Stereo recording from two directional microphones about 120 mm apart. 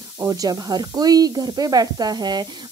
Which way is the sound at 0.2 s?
30° right (ahead or behind).